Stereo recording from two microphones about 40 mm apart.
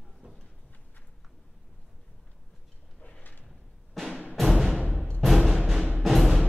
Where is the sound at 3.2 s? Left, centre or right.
Left.